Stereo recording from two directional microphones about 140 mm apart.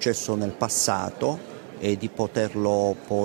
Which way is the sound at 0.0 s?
5° left (ahead or behind).